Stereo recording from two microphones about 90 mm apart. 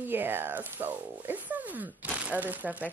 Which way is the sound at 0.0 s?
20° right (ahead or behind).